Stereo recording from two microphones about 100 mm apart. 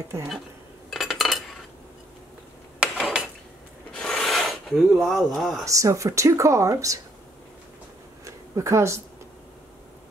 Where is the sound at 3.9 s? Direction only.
5° left (ahead or behind).